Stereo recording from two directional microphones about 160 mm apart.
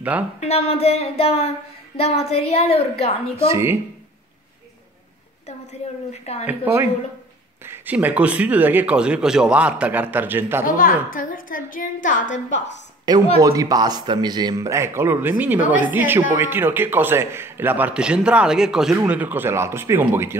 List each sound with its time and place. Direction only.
0.4 s a woman's voice: 40° left (ahead or behind)
3.3 s a man's voice: 15° right (ahead or behind)
6.4 s a man's voice: 15° right (ahead or behind)
10.8 s a woman's voice: 60° left (ahead or behind)
13.1 s a man's voice: 25° right (ahead or behind)
15.6 s a woman's voice: 55° left (ahead or behind)
15.9 s a man's voice: 10° right (ahead or behind)